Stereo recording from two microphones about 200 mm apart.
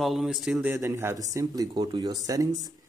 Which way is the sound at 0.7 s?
15° right (ahead or behind).